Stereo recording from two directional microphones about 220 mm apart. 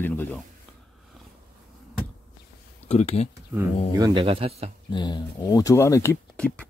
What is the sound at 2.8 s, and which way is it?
Speech, 30° left (ahead or behind).